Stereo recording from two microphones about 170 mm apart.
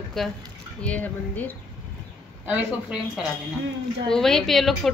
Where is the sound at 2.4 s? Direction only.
10° right (ahead or behind).